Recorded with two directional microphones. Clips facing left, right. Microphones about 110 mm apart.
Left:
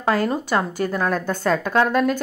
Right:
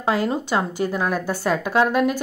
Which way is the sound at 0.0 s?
15° right (ahead or behind).